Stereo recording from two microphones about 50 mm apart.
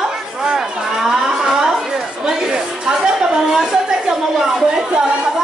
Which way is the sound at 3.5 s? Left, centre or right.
Centre.